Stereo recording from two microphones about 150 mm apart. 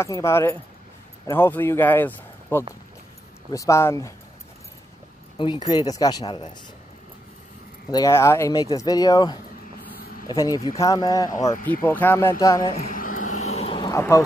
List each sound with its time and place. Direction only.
0.0 s speech: 20° left (ahead or behind)
5.4 s speech: 30° left (ahead or behind)
7.9 s speech: 20° left (ahead or behind)
11.6 s speech: 10° left (ahead or behind)
12.9 s a sound: 65° left (ahead or behind); by 13.7 s 45° left (ahead or behind)
13.7 s a sound: 20° left (ahead or behind)